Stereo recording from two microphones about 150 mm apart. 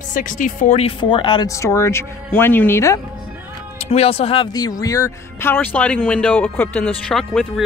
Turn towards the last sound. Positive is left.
turn(degrees=0)  # may be behind; listen again after turning